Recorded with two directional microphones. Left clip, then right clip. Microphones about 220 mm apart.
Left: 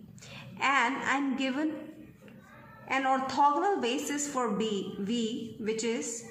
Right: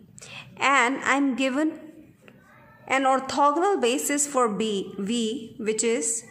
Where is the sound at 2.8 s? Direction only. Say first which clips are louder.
Right 6 dB; 50° right (ahead or behind).